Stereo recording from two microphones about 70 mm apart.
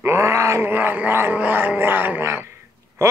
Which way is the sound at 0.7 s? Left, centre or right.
Right.